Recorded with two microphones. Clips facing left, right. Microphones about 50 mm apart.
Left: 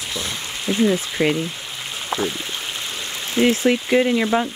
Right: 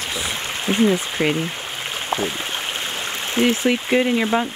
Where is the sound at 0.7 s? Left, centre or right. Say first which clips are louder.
Right 1 dB; right.